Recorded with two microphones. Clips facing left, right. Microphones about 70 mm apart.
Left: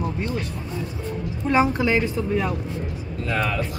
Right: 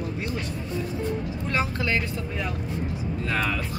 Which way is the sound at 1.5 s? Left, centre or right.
Centre.